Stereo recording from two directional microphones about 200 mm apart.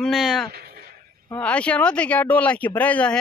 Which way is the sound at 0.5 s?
50° right (ahead or behind).